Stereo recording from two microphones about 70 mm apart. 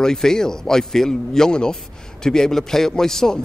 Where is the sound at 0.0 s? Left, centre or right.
Centre.